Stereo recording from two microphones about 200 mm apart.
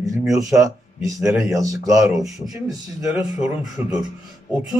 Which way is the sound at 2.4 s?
20° right (ahead or behind).